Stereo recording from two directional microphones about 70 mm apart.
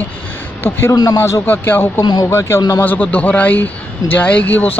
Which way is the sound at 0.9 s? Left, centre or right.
Left.